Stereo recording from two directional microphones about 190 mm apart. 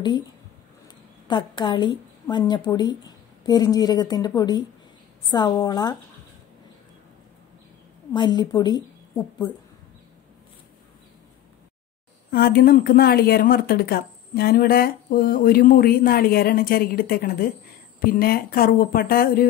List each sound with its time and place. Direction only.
1.2 s a woman's voice: 25° left (ahead or behind)
8.1 s a woman's voice: 25° left (ahead or behind)
12.3 s speech: 55° left (ahead or behind)